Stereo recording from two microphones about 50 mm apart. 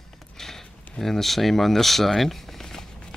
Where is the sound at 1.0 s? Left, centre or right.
Centre.